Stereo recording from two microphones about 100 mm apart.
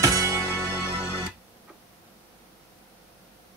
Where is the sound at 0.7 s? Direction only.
25° left (ahead or behind).